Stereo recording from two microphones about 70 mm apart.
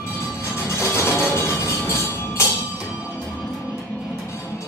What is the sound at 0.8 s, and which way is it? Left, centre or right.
Music, left.